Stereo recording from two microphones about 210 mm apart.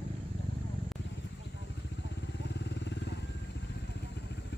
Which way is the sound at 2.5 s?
55° left (ahead or behind).